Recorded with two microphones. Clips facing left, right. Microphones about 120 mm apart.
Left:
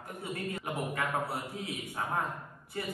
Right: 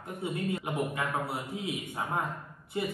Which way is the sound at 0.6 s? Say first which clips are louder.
Right 2 dB; 20° right (ahead or behind).